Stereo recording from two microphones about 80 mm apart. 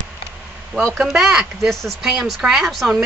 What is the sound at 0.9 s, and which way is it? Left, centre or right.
Speech, centre.